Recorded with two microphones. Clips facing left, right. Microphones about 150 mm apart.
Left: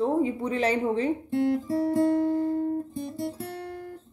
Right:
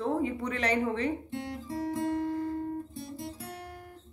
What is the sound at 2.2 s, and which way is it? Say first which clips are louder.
Speech: left 7 dB; 30° left (ahead or behind).